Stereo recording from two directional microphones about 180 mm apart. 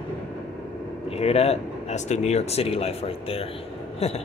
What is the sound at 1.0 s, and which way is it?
Speech, 35° left (ahead or behind).